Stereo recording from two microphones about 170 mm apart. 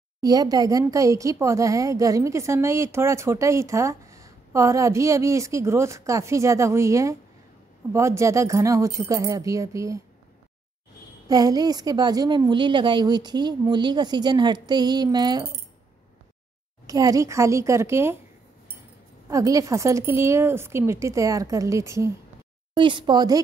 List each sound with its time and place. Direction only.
0.2 s a woman's voice: 25° right (ahead or behind)
11.2 s a woman's voice: 20° right (ahead or behind)
16.8 s a woman's voice: 20° right (ahead or behind)
19.2 s a woman's voice: 20° right (ahead or behind)
22.8 s a woman's voice: 30° right (ahead or behind)